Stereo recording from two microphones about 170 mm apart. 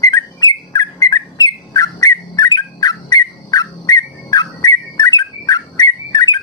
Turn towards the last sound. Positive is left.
turn(degrees=25)  # may be behind; listen again after turning